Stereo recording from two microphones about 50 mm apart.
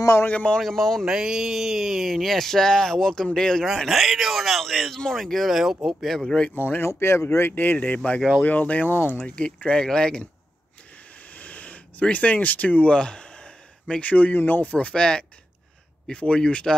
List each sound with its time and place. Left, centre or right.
0.6 s speech: centre
1.0 s speech: centre
3.7 s speech: centre
6.5 s speech: left
6.9 s speech: left
7.8 s speech: left
9.3 s speech: centre
11.3 s a sound: left
14.0 s speech: left
14.7 s speech: left